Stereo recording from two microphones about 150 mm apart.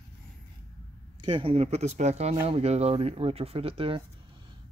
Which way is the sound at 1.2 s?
35° right (ahead or behind).